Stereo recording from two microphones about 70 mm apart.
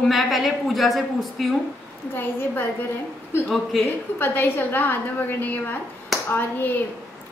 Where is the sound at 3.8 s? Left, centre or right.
Left.